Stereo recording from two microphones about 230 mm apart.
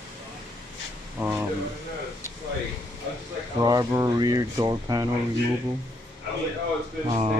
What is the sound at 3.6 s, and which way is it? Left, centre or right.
Speech, centre.